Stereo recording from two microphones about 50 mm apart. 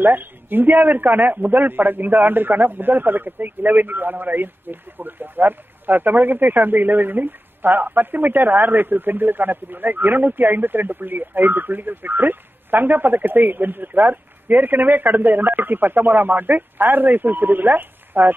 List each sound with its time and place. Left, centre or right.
0.0 s a man's voice: right